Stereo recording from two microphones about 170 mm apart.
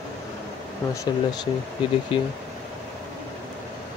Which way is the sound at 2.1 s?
30° left (ahead or behind).